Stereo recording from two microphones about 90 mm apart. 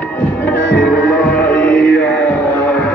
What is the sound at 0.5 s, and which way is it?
Music, 15° left (ahead or behind).